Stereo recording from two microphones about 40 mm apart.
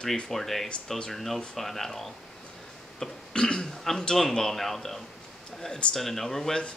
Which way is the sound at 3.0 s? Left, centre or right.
Left.